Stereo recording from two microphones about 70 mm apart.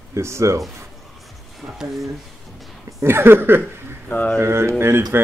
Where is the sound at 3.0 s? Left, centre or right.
Right.